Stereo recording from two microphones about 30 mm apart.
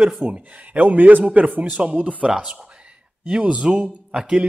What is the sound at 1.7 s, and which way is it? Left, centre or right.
Speech, right.